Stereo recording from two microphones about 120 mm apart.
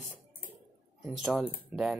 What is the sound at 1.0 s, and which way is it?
Speech, 10° right (ahead or behind).